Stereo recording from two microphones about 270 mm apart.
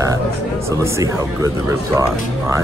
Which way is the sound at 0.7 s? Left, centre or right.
Centre.